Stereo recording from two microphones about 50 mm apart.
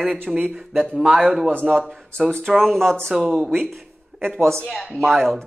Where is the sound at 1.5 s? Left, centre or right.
Right.